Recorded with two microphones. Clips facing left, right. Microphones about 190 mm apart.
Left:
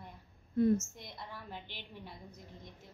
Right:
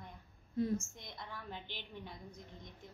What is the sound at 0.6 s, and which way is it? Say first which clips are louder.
Speech: left 7 dB; 55° left (ahead or behind).